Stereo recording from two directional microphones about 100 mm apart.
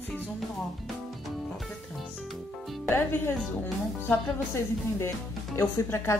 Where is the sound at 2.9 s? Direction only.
20° left (ahead or behind).